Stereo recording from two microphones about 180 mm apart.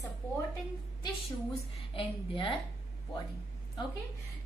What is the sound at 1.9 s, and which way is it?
Speech, 30° left (ahead or behind).